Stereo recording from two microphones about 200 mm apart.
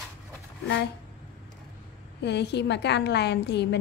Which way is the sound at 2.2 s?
60° left (ahead or behind).